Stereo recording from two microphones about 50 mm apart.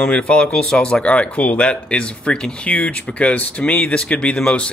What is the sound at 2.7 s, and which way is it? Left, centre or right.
Speech, left.